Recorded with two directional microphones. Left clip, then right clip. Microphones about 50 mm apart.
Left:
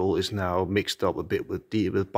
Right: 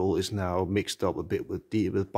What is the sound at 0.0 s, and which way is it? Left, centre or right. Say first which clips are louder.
Speech: left 2 dB; right.